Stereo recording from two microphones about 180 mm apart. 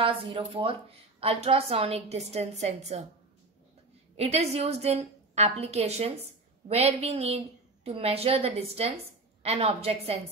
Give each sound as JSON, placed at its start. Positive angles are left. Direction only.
{"t": 0.0, "sound": "a woman's voice", "side_deg": -30}
{"t": 4.2, "sound": "a woman's voice", "side_deg": -35}